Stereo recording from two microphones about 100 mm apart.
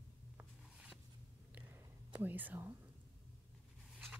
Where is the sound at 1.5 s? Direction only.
20° right (ahead or behind).